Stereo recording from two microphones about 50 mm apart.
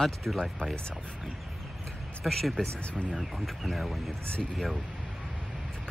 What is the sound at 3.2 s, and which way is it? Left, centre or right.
Speech, centre.